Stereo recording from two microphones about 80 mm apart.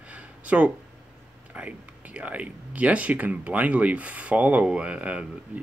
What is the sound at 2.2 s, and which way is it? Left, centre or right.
Speech, centre.